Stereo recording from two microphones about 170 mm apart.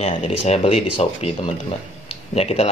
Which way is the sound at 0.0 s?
35° left (ahead or behind).